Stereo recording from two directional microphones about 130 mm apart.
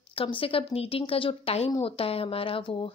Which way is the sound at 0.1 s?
45° left (ahead or behind).